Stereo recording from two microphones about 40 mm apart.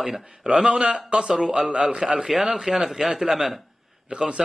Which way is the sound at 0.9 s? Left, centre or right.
Right.